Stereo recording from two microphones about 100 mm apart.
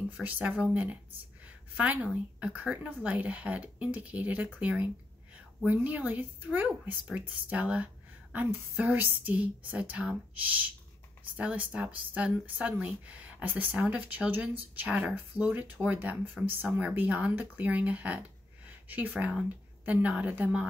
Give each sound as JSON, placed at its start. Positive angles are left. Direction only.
{"t": 0.2, "sound": "speech", "side_deg": -15}